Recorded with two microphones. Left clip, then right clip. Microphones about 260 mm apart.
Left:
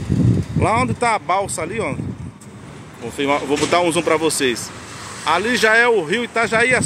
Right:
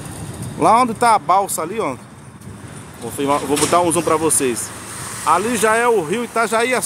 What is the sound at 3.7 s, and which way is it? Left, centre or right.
Speech, centre.